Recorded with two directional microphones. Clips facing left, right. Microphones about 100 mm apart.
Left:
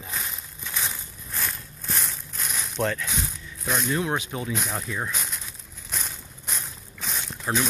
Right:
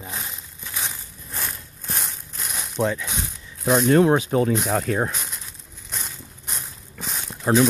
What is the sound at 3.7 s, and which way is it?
Speech, 50° right (ahead or behind).